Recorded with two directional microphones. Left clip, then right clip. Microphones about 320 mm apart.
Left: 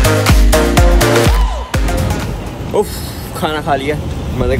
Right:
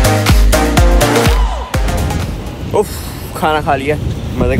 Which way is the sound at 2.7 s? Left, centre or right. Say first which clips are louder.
Right 1 dB; centre.